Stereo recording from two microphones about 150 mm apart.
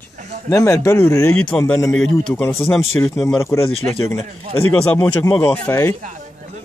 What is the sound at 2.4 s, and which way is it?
Speech, 15° left (ahead or behind).